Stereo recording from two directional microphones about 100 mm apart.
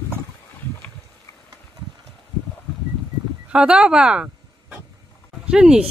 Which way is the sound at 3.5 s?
10° right (ahead or behind).